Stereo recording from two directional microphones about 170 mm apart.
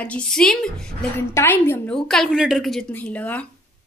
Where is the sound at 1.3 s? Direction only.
15° left (ahead or behind).